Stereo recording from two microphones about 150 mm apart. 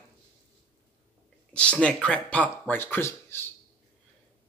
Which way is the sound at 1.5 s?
5° left (ahead or behind).